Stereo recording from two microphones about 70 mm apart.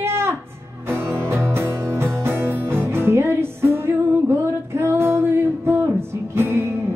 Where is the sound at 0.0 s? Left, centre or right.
Right.